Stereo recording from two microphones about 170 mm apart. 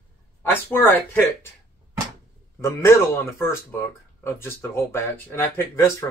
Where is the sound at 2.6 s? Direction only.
15° left (ahead or behind).